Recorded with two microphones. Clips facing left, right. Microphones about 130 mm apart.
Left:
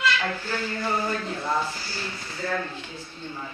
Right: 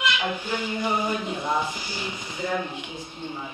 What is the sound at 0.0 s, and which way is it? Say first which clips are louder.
Speech: even; 15° right (ahead or behind).